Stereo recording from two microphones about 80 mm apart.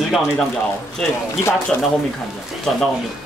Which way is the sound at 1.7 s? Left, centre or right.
Left.